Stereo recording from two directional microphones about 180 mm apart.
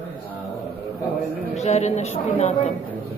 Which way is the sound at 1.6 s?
35° left (ahead or behind).